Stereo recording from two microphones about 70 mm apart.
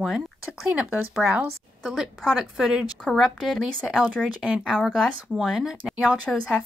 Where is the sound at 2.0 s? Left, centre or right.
Centre.